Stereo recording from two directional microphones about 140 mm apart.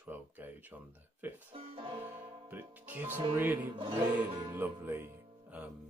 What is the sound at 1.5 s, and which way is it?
Banjo, 35° right (ahead or behind).